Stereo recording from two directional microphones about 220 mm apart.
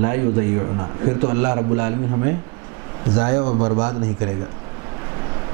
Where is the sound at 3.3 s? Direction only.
25° right (ahead or behind).